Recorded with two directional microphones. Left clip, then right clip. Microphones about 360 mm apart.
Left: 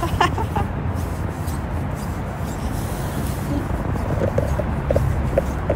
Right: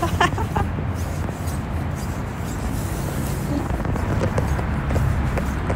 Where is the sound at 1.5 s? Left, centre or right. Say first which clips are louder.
Left 1 dB; centre.